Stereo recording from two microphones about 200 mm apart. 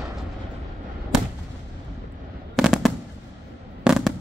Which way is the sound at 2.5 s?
Centre (ahead or behind).